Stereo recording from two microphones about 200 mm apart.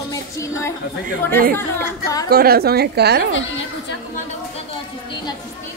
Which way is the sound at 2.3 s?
50° right (ahead or behind).